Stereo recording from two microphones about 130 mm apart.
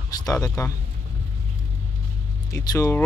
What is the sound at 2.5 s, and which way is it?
Speech, 25° left (ahead or behind).